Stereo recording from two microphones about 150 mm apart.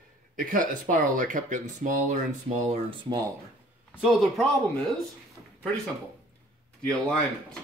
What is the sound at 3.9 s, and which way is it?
Speech, centre (ahead or behind).